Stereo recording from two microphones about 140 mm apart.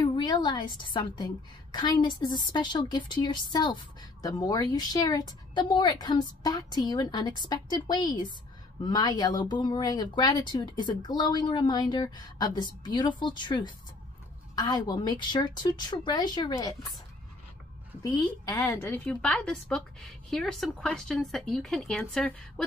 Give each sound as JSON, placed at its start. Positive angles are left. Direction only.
{"t": 0.0, "sound": "a woman's voice", "side_deg": 35}
{"t": 18.0, "sound": "a woman's voice", "side_deg": 25}
{"t": 19.0, "sound": "a woman's voice", "side_deg": 5}